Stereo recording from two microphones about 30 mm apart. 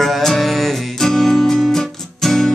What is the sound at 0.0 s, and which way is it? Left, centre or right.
Music, centre.